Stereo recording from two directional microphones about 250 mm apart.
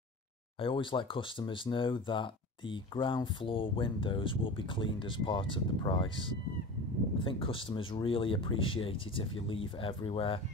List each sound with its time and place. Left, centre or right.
0.6 s speech: centre